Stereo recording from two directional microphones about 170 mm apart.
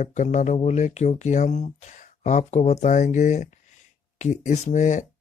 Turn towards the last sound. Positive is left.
turn(degrees=45)  # may be behind; listen again after turning